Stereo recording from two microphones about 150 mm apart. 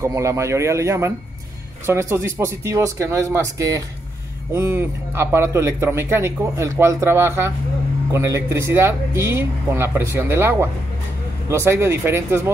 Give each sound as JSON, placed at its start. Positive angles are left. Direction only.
{"t": 0.0, "sound": "a man's voice", "side_deg": -20}